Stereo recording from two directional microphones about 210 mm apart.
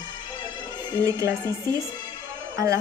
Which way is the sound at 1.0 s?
15° right (ahead or behind).